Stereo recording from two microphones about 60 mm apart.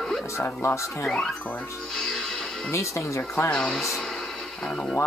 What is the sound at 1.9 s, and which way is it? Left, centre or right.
Music, centre.